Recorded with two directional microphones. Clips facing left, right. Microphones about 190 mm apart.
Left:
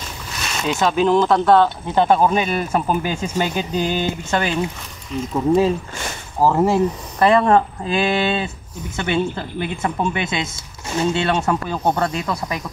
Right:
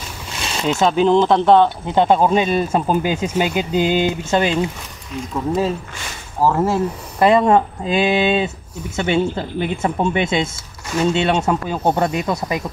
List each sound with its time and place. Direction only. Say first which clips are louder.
0.4 s speech: right 3 dB; 25° right (ahead or behind)
6.4 s speech: left 1 dB; 15° left (ahead or behind)
7.2 s speech: right 1 dB; 20° right (ahead or behind)